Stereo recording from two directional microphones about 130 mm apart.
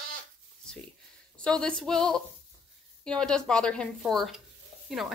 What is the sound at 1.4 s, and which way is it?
A woman's voice, 5° left (ahead or behind).